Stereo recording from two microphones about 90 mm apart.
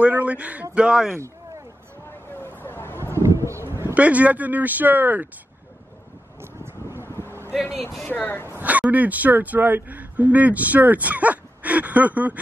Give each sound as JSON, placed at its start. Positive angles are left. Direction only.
{"t": 0.2, "sound": "speech", "side_deg": -15}
{"t": 2.3, "sound": "vehicle", "side_deg": 25}
{"t": 3.0, "sound": "a sound", "side_deg": -35}
{"t": 3.9, "sound": "speech", "side_deg": -15}
{"t": 6.4, "sound": "vehicle", "side_deg": -25}
{"t": 8.1, "sound": "speech", "side_deg": 20}
{"t": 8.5, "sound": "speech", "side_deg": -15}